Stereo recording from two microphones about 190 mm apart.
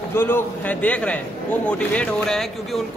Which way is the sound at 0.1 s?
10° left (ahead or behind).